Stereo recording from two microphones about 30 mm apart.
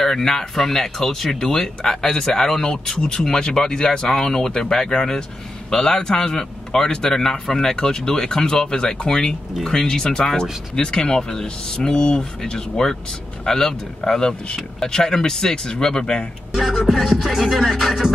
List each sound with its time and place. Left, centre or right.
0.0 s speech: centre
3.3 s speech: left
13.5 s speech: centre
16.9 s music: centre
17.6 s speech: centre